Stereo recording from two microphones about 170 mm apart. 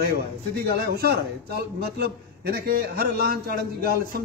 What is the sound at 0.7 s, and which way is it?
A man's voice, 65° right (ahead or behind).